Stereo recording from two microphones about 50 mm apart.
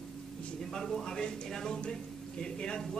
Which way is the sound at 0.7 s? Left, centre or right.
Centre.